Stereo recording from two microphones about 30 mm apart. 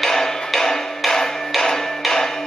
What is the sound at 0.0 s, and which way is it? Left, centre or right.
Music, centre.